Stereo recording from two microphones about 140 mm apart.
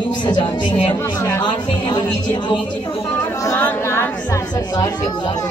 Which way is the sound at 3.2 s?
25° left (ahead or behind).